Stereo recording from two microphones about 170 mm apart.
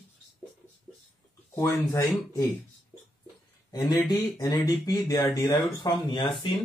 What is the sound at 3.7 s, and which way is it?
Speech, 20° left (ahead or behind).